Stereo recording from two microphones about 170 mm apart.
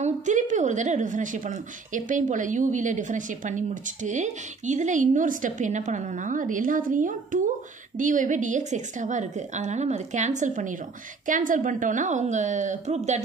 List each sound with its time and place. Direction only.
0.0 s a woman's voice: 45° right (ahead or behind)